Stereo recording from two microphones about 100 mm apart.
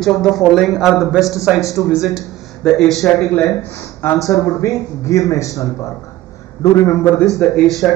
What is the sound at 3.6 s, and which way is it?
Speech, 25° left (ahead or behind).